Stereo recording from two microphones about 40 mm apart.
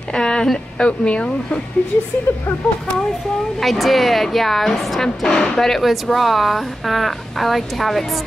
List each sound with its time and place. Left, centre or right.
0.1 s a sound: centre
0.7 s speech: left
2.3 s speech: left
2.6 s speech: left
3.6 s a woman's voice: centre